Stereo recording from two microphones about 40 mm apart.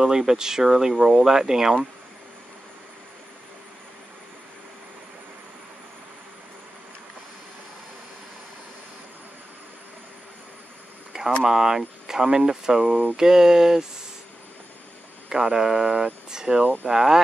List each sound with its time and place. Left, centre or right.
0.0 s speech: centre
11.4 s speech: centre
15.2 s speech: centre
16.8 s speech: right